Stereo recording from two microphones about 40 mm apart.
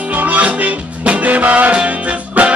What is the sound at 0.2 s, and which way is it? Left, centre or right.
Music, right.